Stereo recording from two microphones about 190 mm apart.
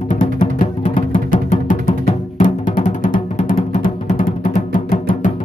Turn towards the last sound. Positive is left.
turn(degrees=40)  # may be behind; listen again after turning